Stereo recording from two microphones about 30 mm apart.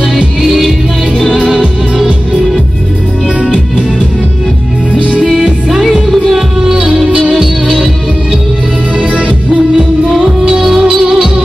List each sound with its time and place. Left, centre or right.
0.4 s music: centre
1.3 s music: centre
5.9 s music: centre
7.1 s music: right
9.1 s music: right
10.8 s music: right